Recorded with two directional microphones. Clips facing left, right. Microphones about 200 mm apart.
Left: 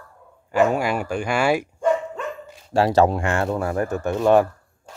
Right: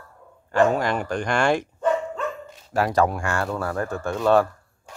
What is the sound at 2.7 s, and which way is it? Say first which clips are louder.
Speech: left 4 dB; 25° left (ahead or behind).